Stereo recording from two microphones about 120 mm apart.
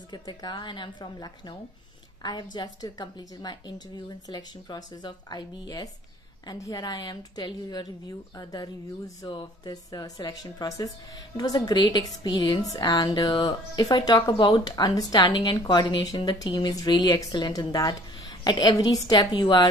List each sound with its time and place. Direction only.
0.1 s speech: 35° left (ahead or behind)